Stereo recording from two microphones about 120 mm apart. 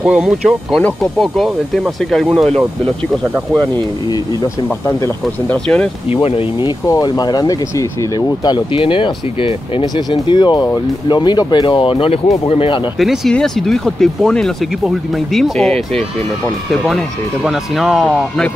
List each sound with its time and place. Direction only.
0.0 s speech: 5° right (ahead or behind)
5.5 s speech: 10° left (ahead or behind)
6.9 s speech: 30° left (ahead or behind); by 12.7 s 50° left (ahead or behind)
13.0 s speech: centre (ahead or behind)